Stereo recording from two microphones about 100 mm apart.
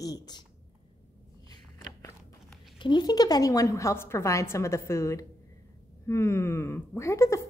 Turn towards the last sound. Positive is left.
turn(degrees=30)  # may be behind; listen again after turning